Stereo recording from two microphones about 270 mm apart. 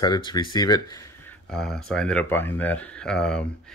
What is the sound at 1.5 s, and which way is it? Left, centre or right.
Speech, centre.